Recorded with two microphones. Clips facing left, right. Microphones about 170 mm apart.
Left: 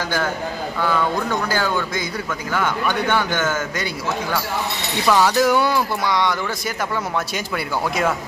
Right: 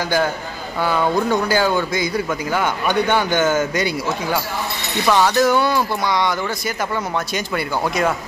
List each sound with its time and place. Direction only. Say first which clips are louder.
0.8 s speech: right 3 dB; 15° right (ahead or behind)
5.0 s speech: right 1 dB; 5° left (ahead or behind)
7.3 s speech: right 2 dB; centre (ahead or behind)